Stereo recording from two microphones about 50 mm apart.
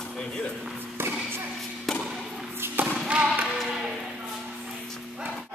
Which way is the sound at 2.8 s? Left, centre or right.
Right.